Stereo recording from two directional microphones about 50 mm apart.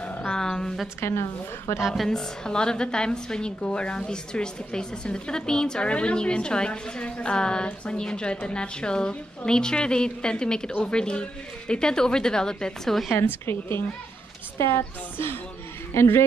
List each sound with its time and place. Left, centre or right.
0.0 s a sound: left
0.4 s a sound: centre
1.0 s a woman's voice: left
1.8 s a woman's voice: centre
2.0 s a woman's voice: centre
13.2 s a woman's voice: left
15.9 s speech: left